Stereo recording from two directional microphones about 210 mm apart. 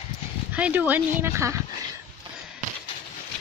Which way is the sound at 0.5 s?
5° right (ahead or behind).